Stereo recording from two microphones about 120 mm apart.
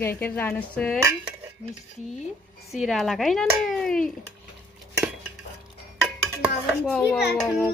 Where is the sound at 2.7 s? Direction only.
Centre (ahead or behind).